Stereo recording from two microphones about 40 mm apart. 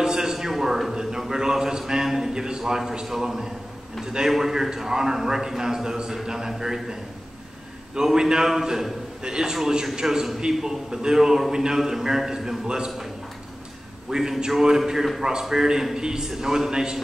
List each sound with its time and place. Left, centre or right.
0.0 s a sound: centre
1.3 s a man's voice: centre
14.1 s a man's voice: centre